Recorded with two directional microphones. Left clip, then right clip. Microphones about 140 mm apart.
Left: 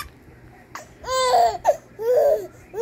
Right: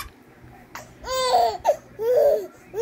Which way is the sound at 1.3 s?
20° right (ahead or behind).